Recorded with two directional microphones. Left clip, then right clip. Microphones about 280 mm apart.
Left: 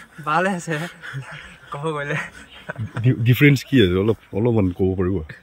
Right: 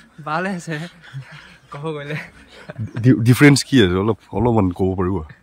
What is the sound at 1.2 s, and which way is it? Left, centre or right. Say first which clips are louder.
Speech: left 4 dB; centre.